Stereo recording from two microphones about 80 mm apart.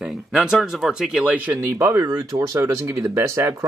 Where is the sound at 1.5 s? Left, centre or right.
Right.